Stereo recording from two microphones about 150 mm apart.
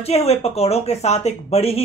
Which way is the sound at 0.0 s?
45° left (ahead or behind).